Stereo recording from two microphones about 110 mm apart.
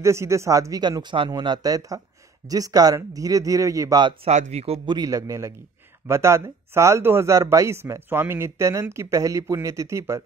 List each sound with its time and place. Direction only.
0.0 s speech: 25° right (ahead or behind)
4.3 s speech: 85° right
4.8 s speech: 35° right (ahead or behind)